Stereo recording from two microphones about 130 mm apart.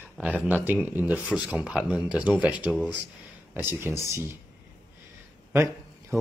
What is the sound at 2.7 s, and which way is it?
Speech, 10° left (ahead or behind).